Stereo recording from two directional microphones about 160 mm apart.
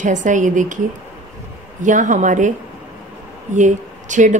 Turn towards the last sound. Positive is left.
turn(degrees=-50)  # may be behind; listen again after turning